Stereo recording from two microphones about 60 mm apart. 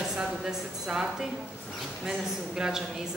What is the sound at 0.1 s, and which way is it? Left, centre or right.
Speech, centre.